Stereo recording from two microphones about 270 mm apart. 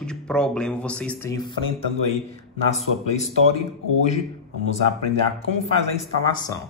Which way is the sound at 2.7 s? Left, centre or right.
Left.